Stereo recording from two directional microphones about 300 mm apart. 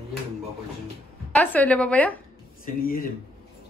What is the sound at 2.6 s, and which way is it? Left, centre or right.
Speech, left.